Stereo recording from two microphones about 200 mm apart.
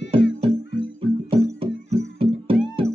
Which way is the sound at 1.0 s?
30° right (ahead or behind).